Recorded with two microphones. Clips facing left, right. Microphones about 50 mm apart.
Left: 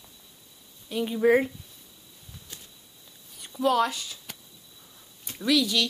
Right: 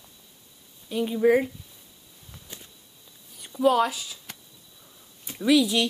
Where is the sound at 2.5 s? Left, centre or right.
Right.